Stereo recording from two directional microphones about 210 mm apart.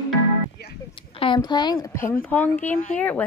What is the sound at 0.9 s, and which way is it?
A woman's voice, 25° left (ahead or behind).